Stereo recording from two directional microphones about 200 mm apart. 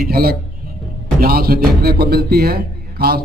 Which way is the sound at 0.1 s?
50° right (ahead or behind).